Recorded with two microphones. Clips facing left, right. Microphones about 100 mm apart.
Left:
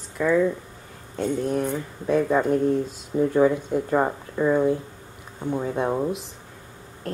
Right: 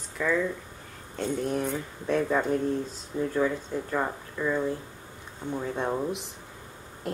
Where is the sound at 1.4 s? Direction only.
Centre (ahead or behind).